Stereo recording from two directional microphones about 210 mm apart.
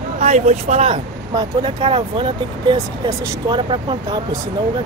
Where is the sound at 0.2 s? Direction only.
30° right (ahead or behind).